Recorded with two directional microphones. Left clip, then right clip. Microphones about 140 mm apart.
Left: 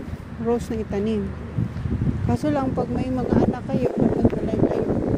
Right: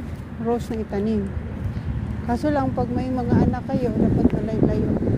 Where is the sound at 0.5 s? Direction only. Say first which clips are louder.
Left 1 dB; 25° left (ahead or behind).